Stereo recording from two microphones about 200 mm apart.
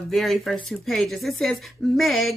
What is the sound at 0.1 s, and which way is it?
Speech, centre (ahead or behind).